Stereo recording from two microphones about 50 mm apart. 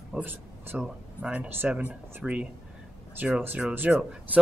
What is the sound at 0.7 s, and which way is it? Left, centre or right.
A man's voice, right.